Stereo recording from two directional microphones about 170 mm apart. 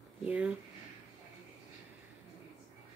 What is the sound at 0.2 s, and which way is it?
Speech, 10° right (ahead or behind).